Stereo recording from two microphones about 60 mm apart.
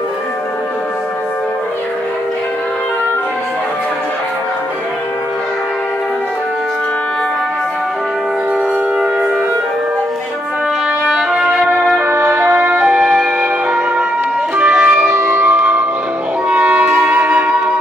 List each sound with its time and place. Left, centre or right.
8.9 s music: centre
11.1 s music: centre
12.2 s music: right
13.0 s music: centre
15.1 s music: right; by 17.7 s centre